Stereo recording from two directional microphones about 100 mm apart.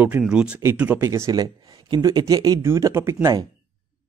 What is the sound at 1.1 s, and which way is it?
Speech, 35° right (ahead or behind).